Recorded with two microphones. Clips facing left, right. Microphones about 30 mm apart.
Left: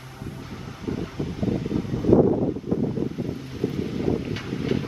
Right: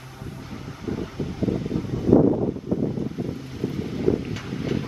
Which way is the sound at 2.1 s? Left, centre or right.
Left.